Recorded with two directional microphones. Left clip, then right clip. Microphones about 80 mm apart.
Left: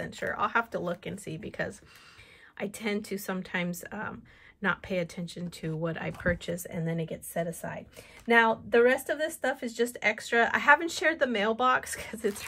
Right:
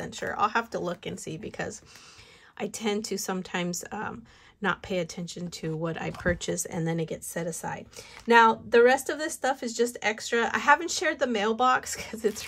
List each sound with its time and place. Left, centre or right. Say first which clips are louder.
0.0 s speech: even; right
0.3 s a woman's voice: right 2 dB; right
5.8 s a woman's voice: left 1 dB; right
6.7 s speech: right 4 dB; right
8.8 s a woman's voice: right 3 dB; right
9.9 s speech: left 1 dB; centre